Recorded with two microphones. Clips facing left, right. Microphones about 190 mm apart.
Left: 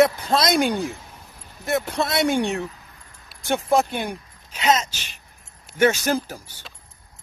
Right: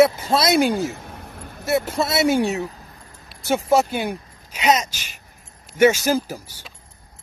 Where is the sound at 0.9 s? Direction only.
65° right (ahead or behind).